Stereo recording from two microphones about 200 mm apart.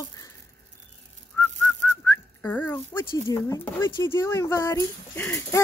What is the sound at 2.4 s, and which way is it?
Speech, 10° left (ahead or behind).